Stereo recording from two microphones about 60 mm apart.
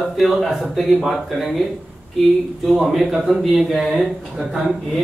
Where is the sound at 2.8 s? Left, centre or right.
Centre.